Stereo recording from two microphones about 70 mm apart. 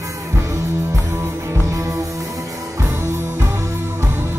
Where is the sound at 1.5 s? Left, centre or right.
Right.